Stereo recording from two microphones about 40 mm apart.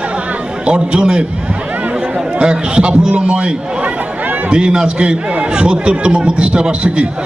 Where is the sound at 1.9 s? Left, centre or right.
Centre.